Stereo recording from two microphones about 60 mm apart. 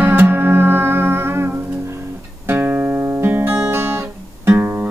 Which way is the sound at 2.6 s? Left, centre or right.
Right.